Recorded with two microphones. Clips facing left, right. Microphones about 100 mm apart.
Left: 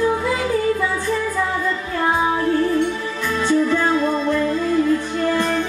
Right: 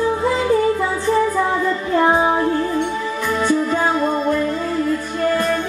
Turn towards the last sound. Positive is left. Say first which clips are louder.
# even
turn(degrees=-15)  # may be behind; listen again after turning